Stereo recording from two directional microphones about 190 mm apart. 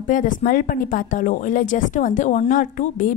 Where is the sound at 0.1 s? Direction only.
45° left (ahead or behind).